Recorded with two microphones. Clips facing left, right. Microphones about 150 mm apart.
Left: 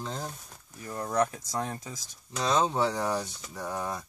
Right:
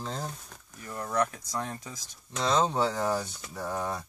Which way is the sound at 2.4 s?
5° left (ahead or behind).